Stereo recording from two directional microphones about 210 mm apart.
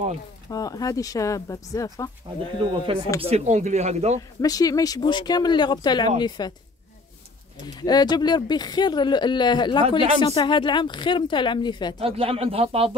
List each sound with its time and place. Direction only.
0.5 s speech: 15° left (ahead or behind)
2.6 s speech: 20° right (ahead or behind)
4.4 s speech: 15° left (ahead or behind)
7.6 s speech: 20° left (ahead or behind)
12.0 s speech: 25° right (ahead or behind)